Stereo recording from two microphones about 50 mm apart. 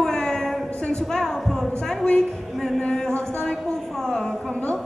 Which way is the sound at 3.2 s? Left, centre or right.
Centre.